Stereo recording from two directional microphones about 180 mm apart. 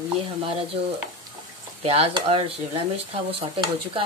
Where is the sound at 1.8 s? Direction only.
35° right (ahead or behind).